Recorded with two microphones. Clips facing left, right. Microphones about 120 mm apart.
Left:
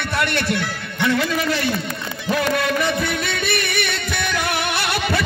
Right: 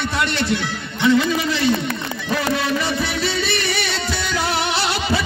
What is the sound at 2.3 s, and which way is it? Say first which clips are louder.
Music: left 1 dB; 55° left (ahead or behind).